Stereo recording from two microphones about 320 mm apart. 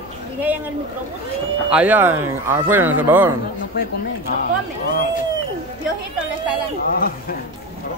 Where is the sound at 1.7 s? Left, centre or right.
Centre.